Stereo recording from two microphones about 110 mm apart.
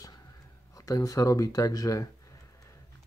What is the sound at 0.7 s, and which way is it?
Speech, 30° left (ahead or behind).